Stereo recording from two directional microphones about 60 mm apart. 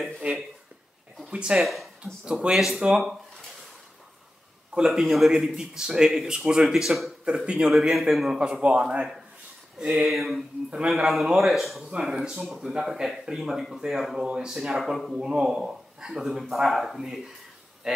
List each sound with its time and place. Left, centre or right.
0.2 s speech: right
1.6 s speech: centre
2.2 s a man's voice: centre
4.7 s a man's voice: centre
6.9 s a man's voice: centre
8.3 s a man's voice: centre
9.8 s a man's voice: centre
15.1 s a man's voice: centre